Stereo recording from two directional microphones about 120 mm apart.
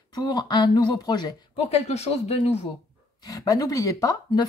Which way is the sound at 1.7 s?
60° left (ahead or behind).